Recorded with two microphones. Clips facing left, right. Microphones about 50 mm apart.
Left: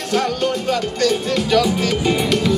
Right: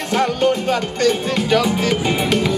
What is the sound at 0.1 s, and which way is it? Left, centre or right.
Music, centre.